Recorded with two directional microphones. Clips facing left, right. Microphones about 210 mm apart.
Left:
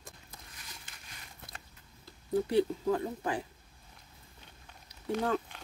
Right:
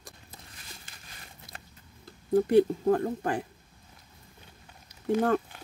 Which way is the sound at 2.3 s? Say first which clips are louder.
Right 7 dB; 50° right (ahead or behind).